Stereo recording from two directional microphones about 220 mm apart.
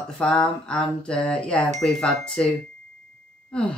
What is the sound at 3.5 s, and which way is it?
Sigh, 5° left (ahead or behind).